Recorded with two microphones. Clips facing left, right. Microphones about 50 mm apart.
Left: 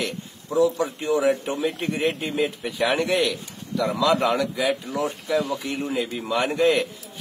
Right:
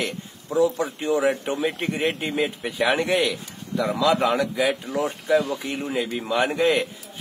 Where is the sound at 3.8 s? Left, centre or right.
Centre.